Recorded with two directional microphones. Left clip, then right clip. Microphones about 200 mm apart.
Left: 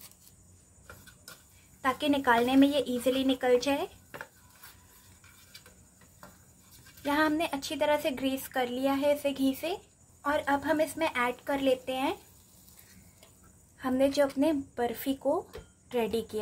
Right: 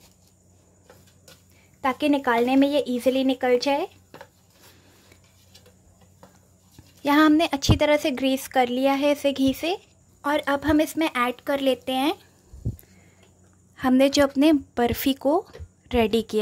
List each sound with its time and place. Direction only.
1.8 s a woman's voice: 30° right (ahead or behind)
7.0 s a woman's voice: 40° right (ahead or behind)
10.2 s a woman's voice: 50° right (ahead or behind)
13.7 s a woman's voice: 45° right (ahead or behind)